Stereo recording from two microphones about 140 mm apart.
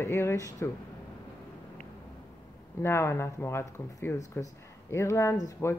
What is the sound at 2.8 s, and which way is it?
Speech, 15° left (ahead or behind).